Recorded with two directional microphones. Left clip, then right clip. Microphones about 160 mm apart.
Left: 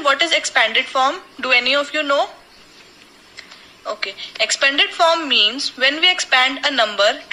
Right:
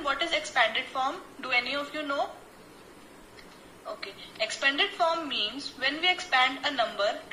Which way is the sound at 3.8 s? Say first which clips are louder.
Left 14 dB; 50° left (ahead or behind).